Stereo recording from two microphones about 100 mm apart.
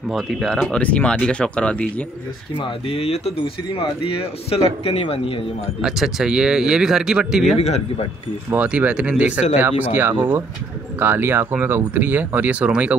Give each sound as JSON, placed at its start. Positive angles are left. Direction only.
{"t": 0.1, "sound": "speech", "side_deg": 0}
{"t": 2.5, "sound": "speech", "side_deg": 65}
{"t": 5.8, "sound": "speech", "side_deg": -5}
{"t": 7.5, "sound": "speech", "side_deg": 90}
{"t": 8.5, "sound": "speech", "side_deg": -15}